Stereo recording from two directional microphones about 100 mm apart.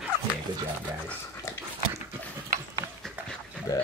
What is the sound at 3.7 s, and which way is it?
Pig, 35° left (ahead or behind).